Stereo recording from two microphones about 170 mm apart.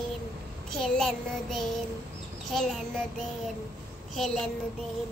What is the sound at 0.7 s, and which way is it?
Child singing, 5° left (ahead or behind).